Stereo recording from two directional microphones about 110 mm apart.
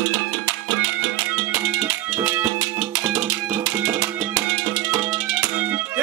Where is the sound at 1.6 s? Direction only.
15° right (ahead or behind).